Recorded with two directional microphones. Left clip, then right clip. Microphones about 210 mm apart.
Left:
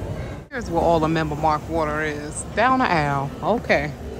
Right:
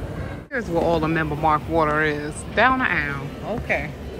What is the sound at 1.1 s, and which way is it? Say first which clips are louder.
Speech: right 1 dB; 10° left (ahead or behind).